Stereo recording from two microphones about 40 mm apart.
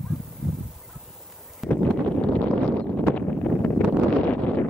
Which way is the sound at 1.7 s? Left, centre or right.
Left.